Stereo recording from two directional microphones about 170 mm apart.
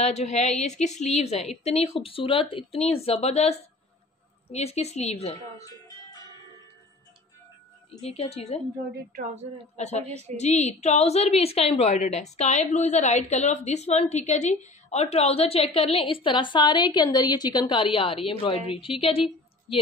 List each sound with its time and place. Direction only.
0.0 s a woman's voice: 40° left (ahead or behind)
8.0 s a woman's voice: 35° left (ahead or behind)
8.9 s speech: 55° right (ahead or behind)
10.0 s a woman's voice: 40° right (ahead or behind)
10.3 s a woman's voice: 40° left (ahead or behind)